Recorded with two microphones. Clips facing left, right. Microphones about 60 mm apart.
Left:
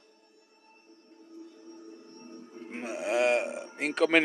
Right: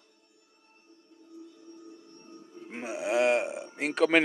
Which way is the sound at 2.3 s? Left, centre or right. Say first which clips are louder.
Left 1 dB; left.